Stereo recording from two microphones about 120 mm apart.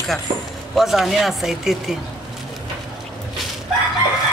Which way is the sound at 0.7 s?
Centre (ahead or behind).